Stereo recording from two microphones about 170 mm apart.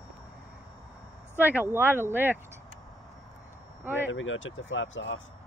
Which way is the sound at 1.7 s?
15° right (ahead or behind).